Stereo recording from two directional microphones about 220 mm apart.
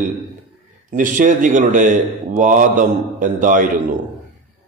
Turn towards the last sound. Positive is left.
turn(degrees=-35)  # may be behind; listen again after turning